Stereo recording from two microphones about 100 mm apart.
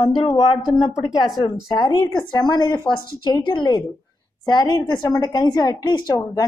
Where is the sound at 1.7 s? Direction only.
50° left (ahead or behind).